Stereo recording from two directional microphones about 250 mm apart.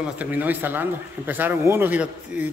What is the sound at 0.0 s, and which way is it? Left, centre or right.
A man's voice, centre.